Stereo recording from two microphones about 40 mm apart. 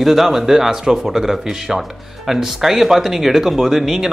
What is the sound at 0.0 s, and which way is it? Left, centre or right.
Speech, centre.